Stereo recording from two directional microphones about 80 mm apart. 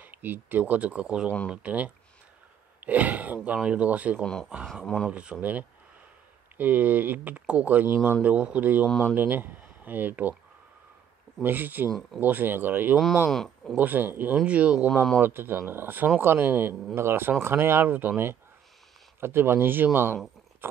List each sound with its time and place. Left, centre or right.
0.0 s speech: right
4.2 s speech: centre
5.1 s speech: centre
11.4 s speech: right
12.9 s speech: centre
13.7 s speech: right
15.1 s speech: right